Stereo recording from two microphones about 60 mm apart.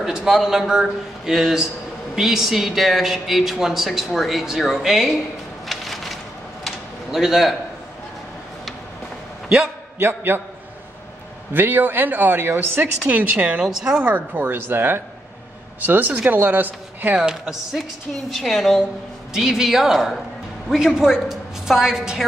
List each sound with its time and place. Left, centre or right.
0.0 s a man's voice: centre
5.7 s a sound: centre
9.9 s speech: right
11.5 s speech: right
13.0 s speech: right
13.7 s speech: centre
13.9 s speech: right
17.2 s a man's voice: centre
18.3 s speech: centre
19.3 s a man's voice: centre